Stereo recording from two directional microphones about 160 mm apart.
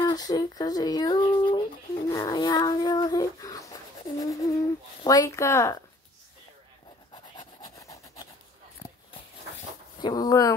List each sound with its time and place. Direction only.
0.0 s a sound: 25° left (ahead or behind)
2.0 s speech: 25° left (ahead or behind)
7.3 s rub: 25° left (ahead or behind)
9.9 s speech: 25° left (ahead or behind)